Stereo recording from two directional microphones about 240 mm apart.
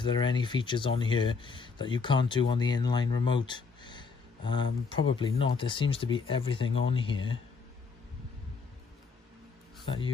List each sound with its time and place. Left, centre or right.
0.0 s speech: centre
9.8 s speech: left